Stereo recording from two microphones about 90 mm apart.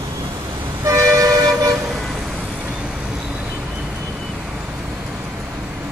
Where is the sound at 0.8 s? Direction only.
35° right (ahead or behind).